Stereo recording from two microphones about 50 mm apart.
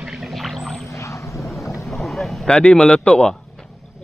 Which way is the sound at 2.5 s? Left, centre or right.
Centre.